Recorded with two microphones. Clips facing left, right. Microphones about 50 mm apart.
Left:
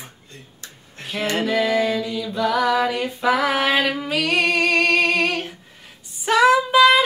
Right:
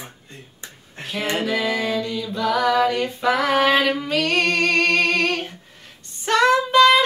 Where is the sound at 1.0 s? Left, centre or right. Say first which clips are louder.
Left 1 dB; centre.